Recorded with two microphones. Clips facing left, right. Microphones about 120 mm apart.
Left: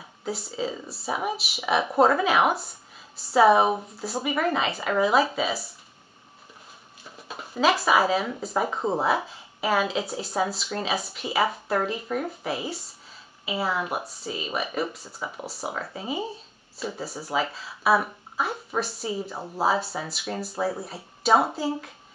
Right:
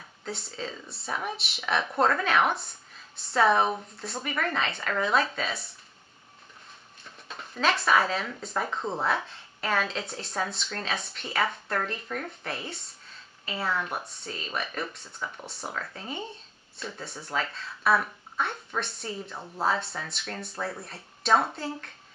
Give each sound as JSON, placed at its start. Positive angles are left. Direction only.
{"t": 0.2, "sound": "a woman's voice", "side_deg": 5}
{"t": 7.1, "sound": "a woman's voice", "side_deg": 10}
{"t": 19.3, "sound": "speech", "side_deg": 30}
{"t": 19.6, "sound": "a woman's voice", "side_deg": 5}